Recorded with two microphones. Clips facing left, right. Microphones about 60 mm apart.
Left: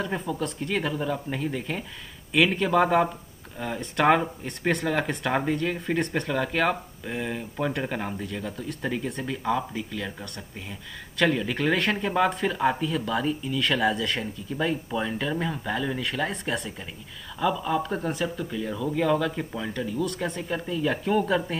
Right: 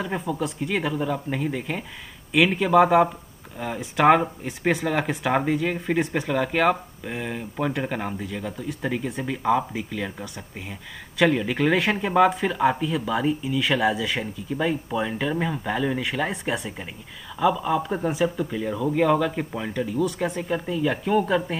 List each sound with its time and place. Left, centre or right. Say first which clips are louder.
0.0 s speech: right 2 dB; centre
19.3 s speech: right 3 dB; right
19.7 s speech: right 5 dB; centre